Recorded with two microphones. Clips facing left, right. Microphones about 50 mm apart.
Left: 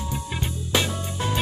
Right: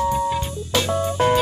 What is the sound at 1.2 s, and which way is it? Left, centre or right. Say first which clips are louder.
Music: right 10 dB; right.